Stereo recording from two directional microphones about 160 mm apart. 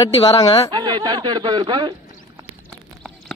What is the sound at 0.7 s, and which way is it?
Speech, 25° right (ahead or behind).